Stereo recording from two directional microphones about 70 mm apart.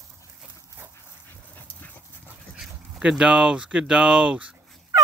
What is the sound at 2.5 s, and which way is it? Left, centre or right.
Speech, centre.